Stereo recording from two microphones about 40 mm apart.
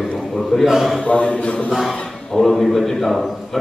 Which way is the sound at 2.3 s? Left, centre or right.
Centre.